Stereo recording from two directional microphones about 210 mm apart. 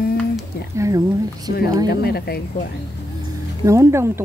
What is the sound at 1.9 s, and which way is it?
Speech, 50° left (ahead or behind).